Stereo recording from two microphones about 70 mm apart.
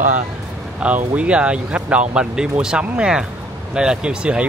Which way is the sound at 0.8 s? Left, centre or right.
Centre.